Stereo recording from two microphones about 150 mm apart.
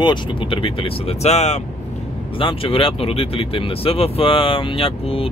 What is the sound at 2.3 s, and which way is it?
Speech, 35° left (ahead or behind).